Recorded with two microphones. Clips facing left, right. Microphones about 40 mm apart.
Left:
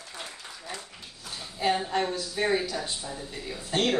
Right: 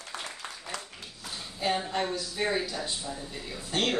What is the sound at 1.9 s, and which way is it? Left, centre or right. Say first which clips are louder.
Speech: left 2 dB; centre.